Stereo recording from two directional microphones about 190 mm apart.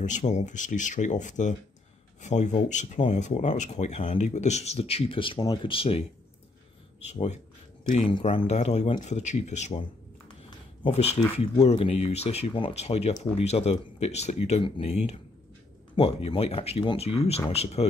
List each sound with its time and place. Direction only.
0.0 s speech: 40° left (ahead or behind)
7.1 s speech: 35° left (ahead or behind)
10.8 s speech: 35° left (ahead or behind)